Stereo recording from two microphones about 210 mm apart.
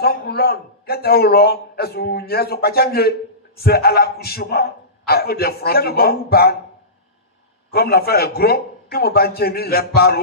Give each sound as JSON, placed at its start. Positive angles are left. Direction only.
{"t": 0.0, "sound": "a man's voice", "side_deg": 45}
{"t": 7.7, "sound": "a man's voice", "side_deg": 45}